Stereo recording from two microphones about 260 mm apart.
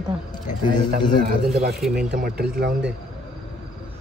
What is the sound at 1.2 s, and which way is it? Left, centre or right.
Speech, right.